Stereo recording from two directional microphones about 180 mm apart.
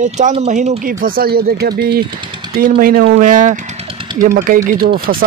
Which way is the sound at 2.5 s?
55° right (ahead or behind).